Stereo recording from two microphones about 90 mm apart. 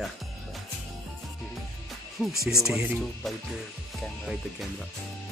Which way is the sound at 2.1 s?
5° right (ahead or behind).